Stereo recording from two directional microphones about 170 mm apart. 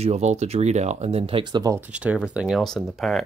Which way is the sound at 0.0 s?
40° right (ahead or behind).